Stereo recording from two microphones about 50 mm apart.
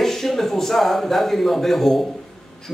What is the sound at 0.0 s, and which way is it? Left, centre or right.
Speech, centre.